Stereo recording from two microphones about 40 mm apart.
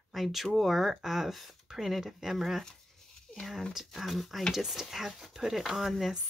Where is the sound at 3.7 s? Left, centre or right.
Centre.